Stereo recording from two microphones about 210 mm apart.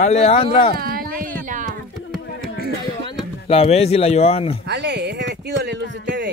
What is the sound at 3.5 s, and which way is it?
A man's voice, 30° left (ahead or behind).